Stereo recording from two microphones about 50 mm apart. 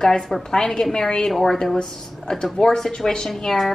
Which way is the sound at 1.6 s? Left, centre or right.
Centre.